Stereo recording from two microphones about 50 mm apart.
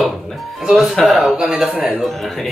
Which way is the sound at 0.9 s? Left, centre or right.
Centre.